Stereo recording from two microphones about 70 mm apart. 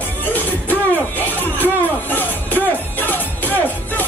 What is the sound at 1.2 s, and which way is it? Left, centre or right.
Music, left.